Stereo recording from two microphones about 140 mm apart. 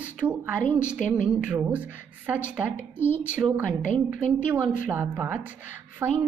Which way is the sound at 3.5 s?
10° right (ahead or behind).